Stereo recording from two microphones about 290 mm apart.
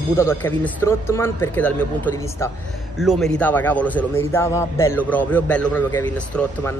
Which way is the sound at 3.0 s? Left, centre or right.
Centre.